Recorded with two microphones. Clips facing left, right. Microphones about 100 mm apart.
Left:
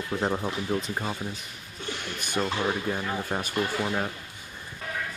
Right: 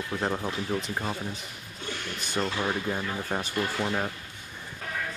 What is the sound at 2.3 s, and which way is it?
Speech, 5° left (ahead or behind).